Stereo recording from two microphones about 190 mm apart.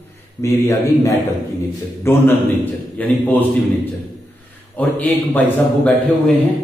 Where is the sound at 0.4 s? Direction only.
15° left (ahead or behind).